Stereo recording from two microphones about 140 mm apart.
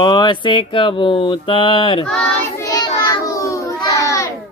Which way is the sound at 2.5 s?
25° left (ahead or behind).